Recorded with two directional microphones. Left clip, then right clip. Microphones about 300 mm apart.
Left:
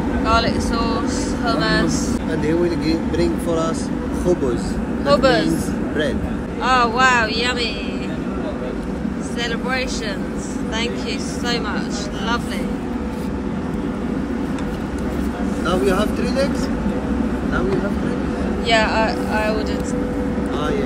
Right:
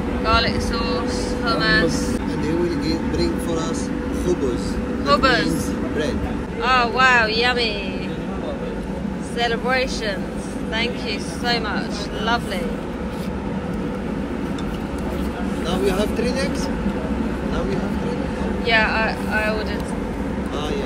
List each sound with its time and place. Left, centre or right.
0.3 s speech: centre
2.4 s speech: left
5.0 s speech: centre
6.6 s speech: centre
9.4 s speech: centre
15.8 s speech: left
18.7 s speech: centre